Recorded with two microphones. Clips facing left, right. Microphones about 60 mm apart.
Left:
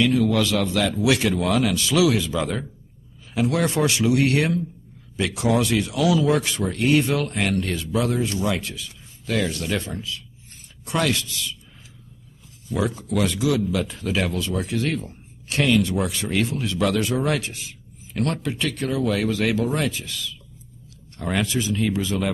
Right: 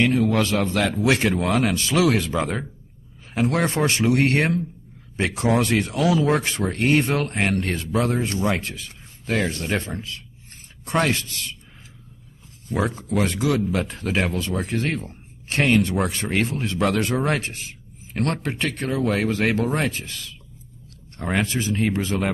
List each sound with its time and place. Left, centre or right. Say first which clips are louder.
0.0 s speech: even; right
2.4 s speech: even; right
12.6 s speech: even; right